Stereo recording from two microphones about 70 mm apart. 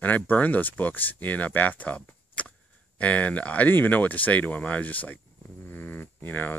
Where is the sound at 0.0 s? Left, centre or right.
Left.